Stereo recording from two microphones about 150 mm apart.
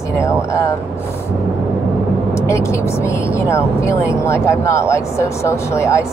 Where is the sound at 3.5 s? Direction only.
20° left (ahead or behind).